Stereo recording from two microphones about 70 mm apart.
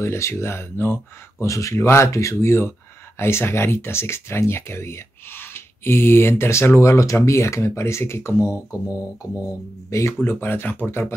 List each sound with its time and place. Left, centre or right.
0.0 s speech: left
1.4 s speech: left
9.8 s speech: left
10.2 s speech: left